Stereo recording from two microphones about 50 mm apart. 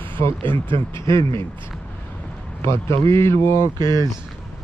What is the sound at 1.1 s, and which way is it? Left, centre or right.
Speech, left.